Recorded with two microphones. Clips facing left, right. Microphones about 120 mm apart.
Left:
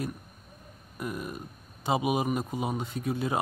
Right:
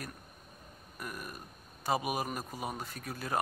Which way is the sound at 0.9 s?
20° left (ahead or behind).